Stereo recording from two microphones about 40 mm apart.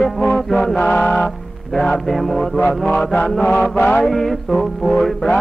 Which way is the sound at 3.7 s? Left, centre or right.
Left.